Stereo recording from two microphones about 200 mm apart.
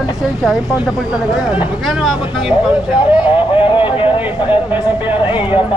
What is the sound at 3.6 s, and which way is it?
Speech, 25° left (ahead or behind).